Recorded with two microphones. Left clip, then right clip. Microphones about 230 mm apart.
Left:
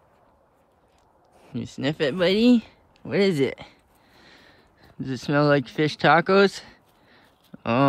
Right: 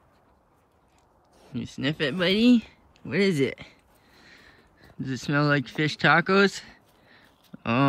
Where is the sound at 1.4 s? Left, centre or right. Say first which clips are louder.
Left 2 dB; centre.